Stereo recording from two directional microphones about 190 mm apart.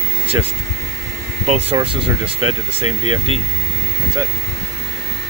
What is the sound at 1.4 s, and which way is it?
Speech, 30° right (ahead or behind).